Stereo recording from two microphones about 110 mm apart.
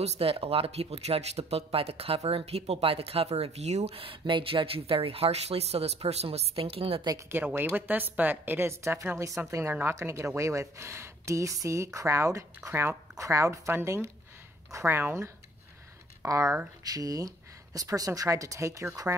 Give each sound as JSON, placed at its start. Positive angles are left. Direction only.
{"t": 0.0, "sound": "speech", "side_deg": -60}
{"t": 7.2, "sound": "a woman's voice", "side_deg": -20}